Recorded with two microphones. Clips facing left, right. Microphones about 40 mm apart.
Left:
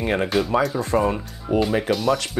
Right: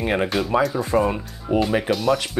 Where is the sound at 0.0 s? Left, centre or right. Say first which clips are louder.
Even; centre.